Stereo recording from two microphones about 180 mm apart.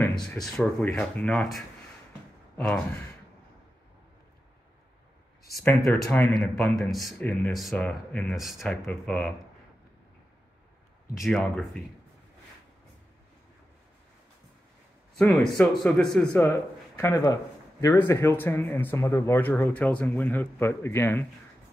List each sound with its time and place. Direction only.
0.0 s speech: 5° left (ahead or behind)
5.8 s a man's voice: centre (ahead or behind)
11.1 s speech: centre (ahead or behind)
15.1 s speech: 5° left (ahead or behind)
16.3 s a man's voice: 15° left (ahead or behind)